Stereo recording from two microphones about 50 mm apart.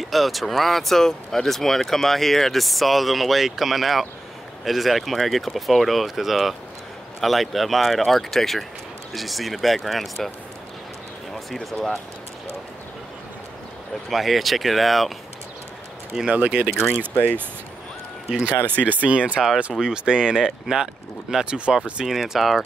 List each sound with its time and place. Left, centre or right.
0.0 s speech: centre
11.3 s speech: centre
14.1 s speech: centre
16.3 s speech: right
18.3 s speech: right; by 22.6 s centre